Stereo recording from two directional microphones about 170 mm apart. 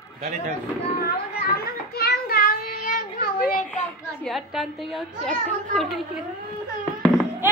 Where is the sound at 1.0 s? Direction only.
65° left (ahead or behind).